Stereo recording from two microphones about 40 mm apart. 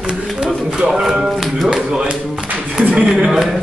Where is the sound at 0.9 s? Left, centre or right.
Centre.